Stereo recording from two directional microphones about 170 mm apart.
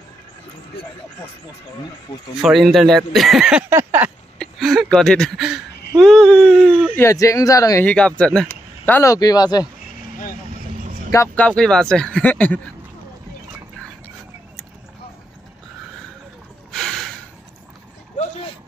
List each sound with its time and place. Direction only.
2.4 s speech: centre (ahead or behind)
3.7 s a sound: 10° right (ahead or behind)
4.4 s speech: centre (ahead or behind)
7.0 s speech: 15° left (ahead or behind)
7.8 s speech: 5° left (ahead or behind); by 9.7 s 25° left (ahead or behind)
11.3 s speech: 5° left (ahead or behind)
16.7 s gasp: centre (ahead or behind)